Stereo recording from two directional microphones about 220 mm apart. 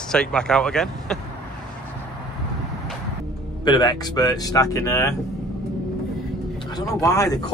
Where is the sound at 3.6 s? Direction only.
20° left (ahead or behind).